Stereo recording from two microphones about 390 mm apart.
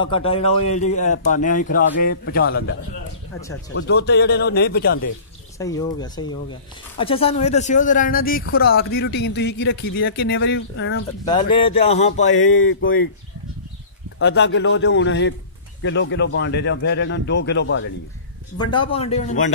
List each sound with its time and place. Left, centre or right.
0.0 s speech: centre
3.7 s speech: left
5.6 s speech: centre; by 11.0 s left
11.2 s speech: centre
12.3 s speech: left
14.2 s speech: left
18.6 s speech: centre